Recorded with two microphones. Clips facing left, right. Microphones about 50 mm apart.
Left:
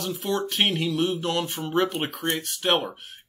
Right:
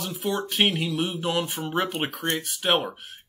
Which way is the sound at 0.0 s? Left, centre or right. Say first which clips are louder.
Left 1 dB; centre.